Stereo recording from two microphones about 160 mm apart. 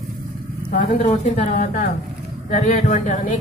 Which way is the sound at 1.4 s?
55° left (ahead or behind).